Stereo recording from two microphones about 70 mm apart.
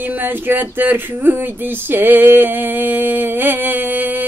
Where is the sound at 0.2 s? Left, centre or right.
Right.